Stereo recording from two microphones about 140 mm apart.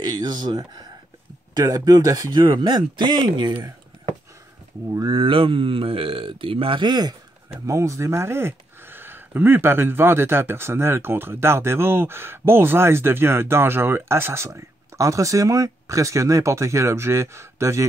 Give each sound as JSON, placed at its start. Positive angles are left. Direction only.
{"t": 0.0, "sound": "speech", "side_deg": -30}
{"t": 2.4, "sound": "speech", "side_deg": -35}
{"t": 4.8, "sound": "speech", "side_deg": -25}
{"t": 5.1, "sound": "speech", "side_deg": -40}